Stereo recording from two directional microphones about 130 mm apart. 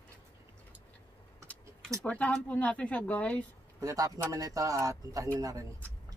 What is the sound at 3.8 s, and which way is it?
Speech, 25° right (ahead or behind).